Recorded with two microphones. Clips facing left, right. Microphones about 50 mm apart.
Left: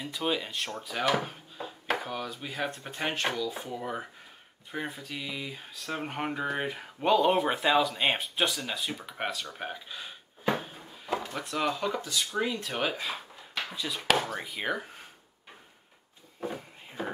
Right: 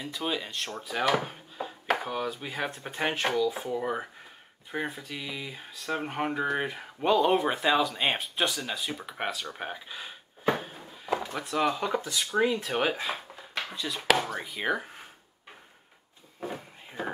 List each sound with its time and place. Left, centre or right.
0.0 s speech: centre
11.9 s speech: centre
13.7 s speech: centre
16.3 s a sound: centre